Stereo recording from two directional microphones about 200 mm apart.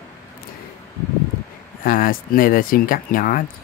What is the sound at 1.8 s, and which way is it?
Speech, 45° left (ahead or behind).